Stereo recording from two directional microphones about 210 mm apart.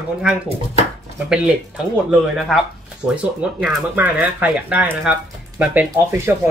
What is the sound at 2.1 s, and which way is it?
Speech, centre (ahead or behind).